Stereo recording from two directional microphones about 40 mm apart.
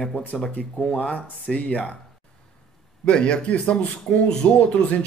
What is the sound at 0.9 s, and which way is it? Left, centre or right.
Speech, left.